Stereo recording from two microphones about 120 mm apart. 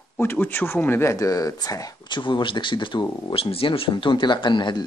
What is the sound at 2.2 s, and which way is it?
Speech, 45° left (ahead or behind).